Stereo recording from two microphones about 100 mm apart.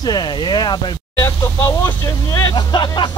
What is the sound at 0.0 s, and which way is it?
Speech, 40° left (ahead or behind).